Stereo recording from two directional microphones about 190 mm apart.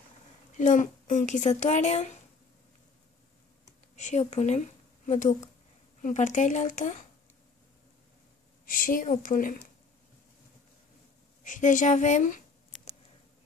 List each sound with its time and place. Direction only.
0.6 s speech: 40° left (ahead or behind)
3.9 s speech: 35° left (ahead or behind)
8.6 s speech: 45° left (ahead or behind)
11.4 s speech: 40° left (ahead or behind)